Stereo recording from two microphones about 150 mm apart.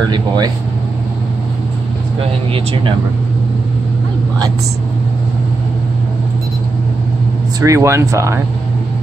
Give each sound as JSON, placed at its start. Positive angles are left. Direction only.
{"t": 0.0, "sound": "speech", "side_deg": -30}
{"t": 2.1, "sound": "speech", "side_deg": -35}
{"t": 7.6, "sound": "speech", "side_deg": -20}